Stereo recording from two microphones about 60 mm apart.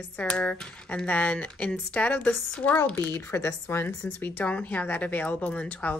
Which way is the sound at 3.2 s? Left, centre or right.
Left.